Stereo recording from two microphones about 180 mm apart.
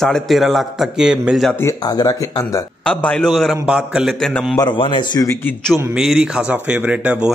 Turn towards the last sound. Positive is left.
turn(degrees=-5)  # may be behind; listen again after turning